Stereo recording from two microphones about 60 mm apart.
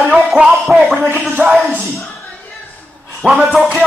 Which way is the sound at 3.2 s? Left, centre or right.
Centre.